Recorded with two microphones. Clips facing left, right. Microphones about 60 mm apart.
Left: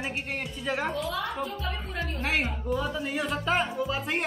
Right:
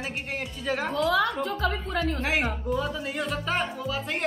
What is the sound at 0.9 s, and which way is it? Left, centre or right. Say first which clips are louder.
A woman's voice: right 7 dB; right.